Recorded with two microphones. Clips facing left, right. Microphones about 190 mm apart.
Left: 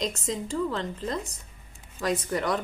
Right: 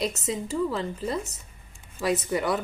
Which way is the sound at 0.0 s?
10° right (ahead or behind).